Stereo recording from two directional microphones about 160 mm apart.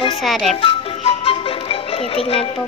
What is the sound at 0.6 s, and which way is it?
Music, 35° left (ahead or behind).